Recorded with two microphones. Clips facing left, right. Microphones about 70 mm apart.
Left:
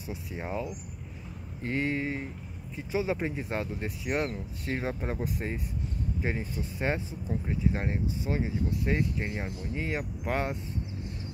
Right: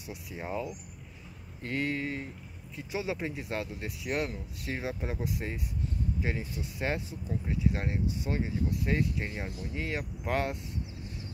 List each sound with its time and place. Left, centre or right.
0.4 s speech: centre
8.3 s speech: centre